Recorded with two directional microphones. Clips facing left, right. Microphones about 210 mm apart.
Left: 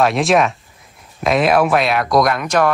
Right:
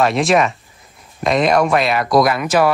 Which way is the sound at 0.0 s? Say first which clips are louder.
Even; centre (ahead or behind).